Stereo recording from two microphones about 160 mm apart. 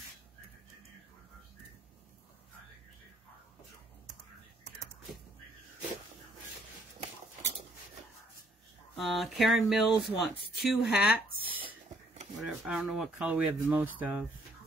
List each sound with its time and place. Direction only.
8.9 s speech: centre (ahead or behind)
11.3 s a sound: 35° right (ahead or behind)
12.4 s speech: 5° right (ahead or behind)